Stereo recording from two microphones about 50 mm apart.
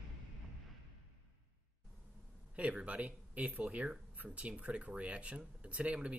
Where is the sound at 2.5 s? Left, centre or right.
Right.